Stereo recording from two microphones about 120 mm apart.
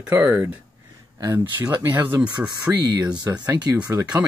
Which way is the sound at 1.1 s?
30° right (ahead or behind).